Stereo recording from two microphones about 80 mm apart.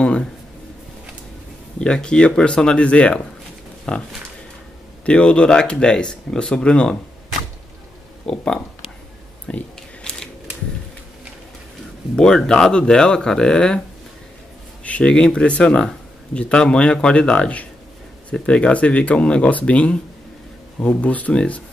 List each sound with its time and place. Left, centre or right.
0.0 s speech: centre
1.8 s speech: centre
8.3 s speech: centre
9.5 s a sound: centre
12.2 s speech: centre
14.8 s speech: centre